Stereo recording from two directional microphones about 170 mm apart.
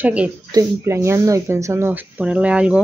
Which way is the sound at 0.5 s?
20° right (ahead or behind).